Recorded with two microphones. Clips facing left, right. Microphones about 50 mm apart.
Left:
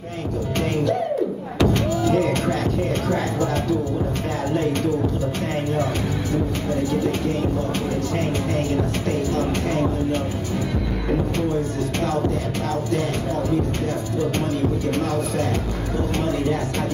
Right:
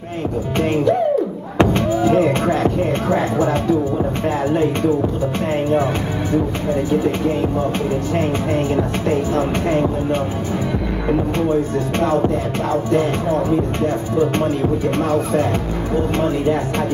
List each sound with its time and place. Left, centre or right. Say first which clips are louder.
1.6 s music: right 5 dB; right
6.7 s speech: right 5 dB; right
12.0 s speech: right 6 dB; right
14.1 s speech: right 6 dB; right